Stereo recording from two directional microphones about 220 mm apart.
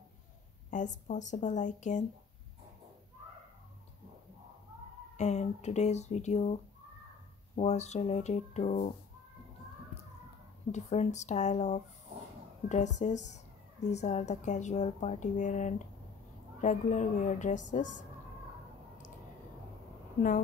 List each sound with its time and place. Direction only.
0.7 s speech: 35° left (ahead or behind)
5.1 s speech: 30° left (ahead or behind)
10.7 s speech: 30° left (ahead or behind)